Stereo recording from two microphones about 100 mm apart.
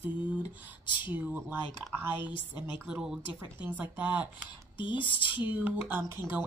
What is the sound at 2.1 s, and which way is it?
Speech, 50° left (ahead or behind).